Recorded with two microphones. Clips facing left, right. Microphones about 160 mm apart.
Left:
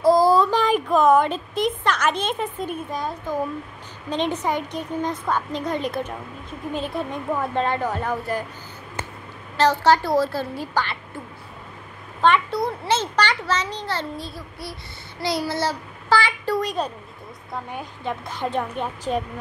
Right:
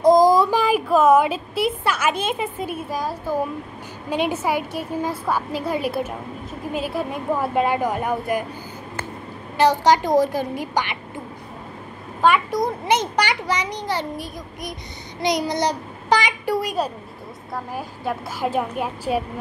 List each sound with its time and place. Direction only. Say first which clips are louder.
0.0 s a child's voice: right 2 dB; 15° right (ahead or behind)
9.6 s a child's voice: right 1 dB; 15° right (ahead or behind)
12.2 s a child's voice: right 1 dB; 10° right (ahead or behind)